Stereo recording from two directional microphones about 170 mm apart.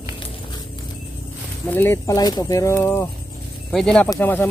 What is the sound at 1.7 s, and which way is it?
Speech, 15° left (ahead or behind).